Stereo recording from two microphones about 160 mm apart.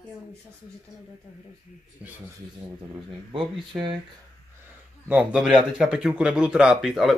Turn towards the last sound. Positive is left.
turn(degrees=0)  # may be behind; listen again after turning